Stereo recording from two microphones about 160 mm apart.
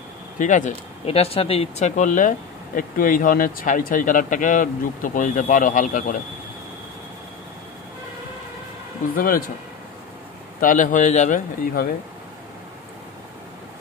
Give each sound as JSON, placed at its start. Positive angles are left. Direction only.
{"t": 0.4, "sound": "speech", "side_deg": 50}
{"t": 9.1, "sound": "speech", "side_deg": 65}
{"t": 10.6, "sound": "a man's voice", "side_deg": 55}